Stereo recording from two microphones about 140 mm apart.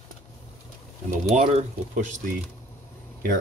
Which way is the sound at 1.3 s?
55° right (ahead or behind).